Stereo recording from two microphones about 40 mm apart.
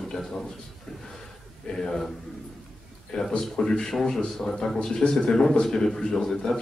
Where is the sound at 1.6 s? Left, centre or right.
Centre.